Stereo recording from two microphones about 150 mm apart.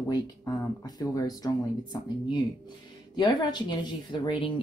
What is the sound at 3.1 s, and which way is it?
Speech, 30° left (ahead or behind).